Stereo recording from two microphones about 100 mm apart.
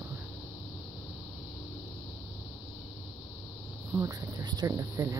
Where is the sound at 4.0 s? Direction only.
35° right (ahead or behind).